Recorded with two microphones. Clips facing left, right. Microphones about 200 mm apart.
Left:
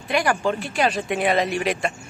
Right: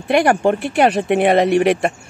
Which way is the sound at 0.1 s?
60° right (ahead or behind).